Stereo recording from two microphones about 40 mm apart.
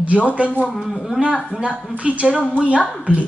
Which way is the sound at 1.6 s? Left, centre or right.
Right.